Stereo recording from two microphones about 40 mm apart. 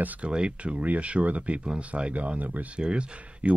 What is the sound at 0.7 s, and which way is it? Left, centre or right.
Speech, right.